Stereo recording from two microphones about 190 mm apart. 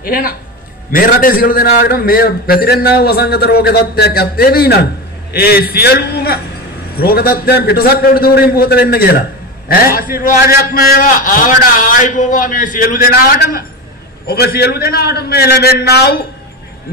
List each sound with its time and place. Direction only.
0.0 s a man's voice: 50° left (ahead or behind)